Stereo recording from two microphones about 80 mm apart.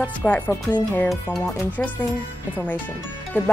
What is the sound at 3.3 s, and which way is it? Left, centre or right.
Speech, centre.